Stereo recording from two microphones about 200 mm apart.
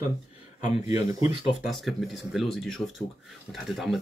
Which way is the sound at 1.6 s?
Centre (ahead or behind).